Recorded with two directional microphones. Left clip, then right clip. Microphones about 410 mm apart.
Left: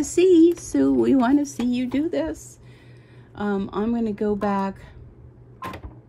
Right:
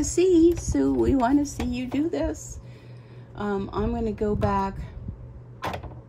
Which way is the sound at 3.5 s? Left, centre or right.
Centre.